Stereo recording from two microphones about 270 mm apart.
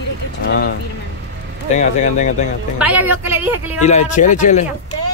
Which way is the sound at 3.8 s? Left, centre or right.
Left.